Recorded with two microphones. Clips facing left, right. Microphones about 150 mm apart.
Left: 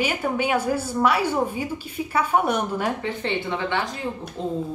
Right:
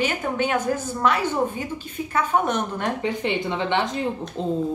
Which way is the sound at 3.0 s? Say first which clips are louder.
Right 2 dB; 15° right (ahead or behind).